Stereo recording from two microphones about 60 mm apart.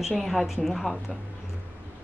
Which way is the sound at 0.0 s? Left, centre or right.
Centre.